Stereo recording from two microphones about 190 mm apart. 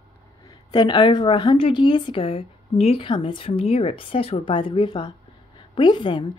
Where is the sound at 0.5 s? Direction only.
20° left (ahead or behind).